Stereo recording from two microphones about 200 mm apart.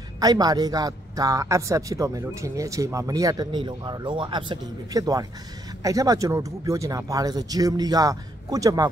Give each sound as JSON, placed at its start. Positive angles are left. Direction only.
{"t": 0.2, "sound": "a man's voice", "side_deg": -20}